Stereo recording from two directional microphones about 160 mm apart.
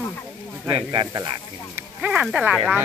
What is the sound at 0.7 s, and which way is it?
Speech, 30° right (ahead or behind).